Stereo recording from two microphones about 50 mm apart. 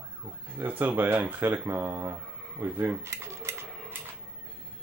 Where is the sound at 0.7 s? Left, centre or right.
Right.